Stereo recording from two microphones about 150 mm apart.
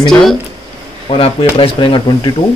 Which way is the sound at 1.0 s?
40° left (ahead or behind).